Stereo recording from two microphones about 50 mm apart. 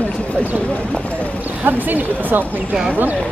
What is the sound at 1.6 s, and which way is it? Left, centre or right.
Speech, right.